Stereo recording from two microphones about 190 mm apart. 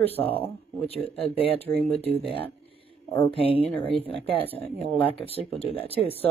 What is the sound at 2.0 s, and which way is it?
Speech, 30° right (ahead or behind).